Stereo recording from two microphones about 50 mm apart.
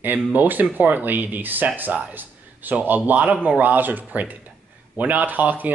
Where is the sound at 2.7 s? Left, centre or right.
Right.